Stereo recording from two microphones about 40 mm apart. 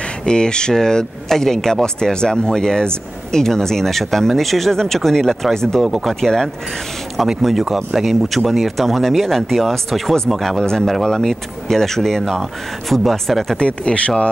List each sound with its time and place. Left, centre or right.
0.2 s speech: left
5.8 s speech: centre
6.2 s speech: centre
7.7 s speech: centre
13.6 s speech: left